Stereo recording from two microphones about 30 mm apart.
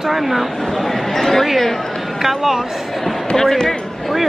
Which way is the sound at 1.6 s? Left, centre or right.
Centre.